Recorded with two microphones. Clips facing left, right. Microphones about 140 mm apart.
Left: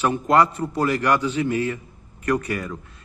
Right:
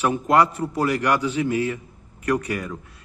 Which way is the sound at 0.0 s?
10° right (ahead or behind).